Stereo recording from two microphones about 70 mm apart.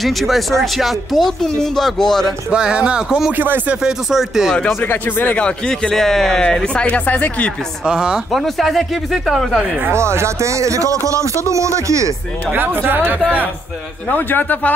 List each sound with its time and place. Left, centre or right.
0.0 s speech: centre
2.5 s speech: centre
3.3 s speech: right
3.8 s speech: centre
4.7 s a man's voice: left
5.4 s speech: centre
7.8 s speech: centre
8.3 s speech: centre
9.8 s speech: right
12.5 s speech: right
14.0 s a man's voice: left